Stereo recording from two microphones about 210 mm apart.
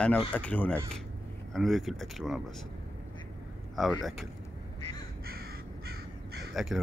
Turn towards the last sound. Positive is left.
turn(degrees=-50)  # may be behind; listen again after turning